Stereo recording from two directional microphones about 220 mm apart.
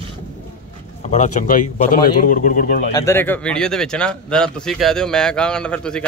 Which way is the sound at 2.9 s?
10° left (ahead or behind).